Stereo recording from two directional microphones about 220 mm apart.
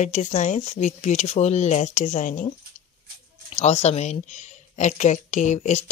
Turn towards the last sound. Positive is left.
turn(degrees=35)  # may be behind; listen again after turning